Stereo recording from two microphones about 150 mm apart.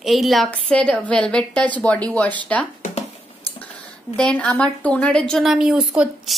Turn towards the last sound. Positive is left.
turn(degrees=0)  # may be behind; listen again after turning